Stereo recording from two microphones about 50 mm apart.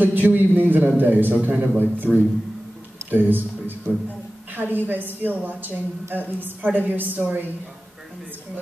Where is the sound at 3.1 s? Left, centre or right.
Right.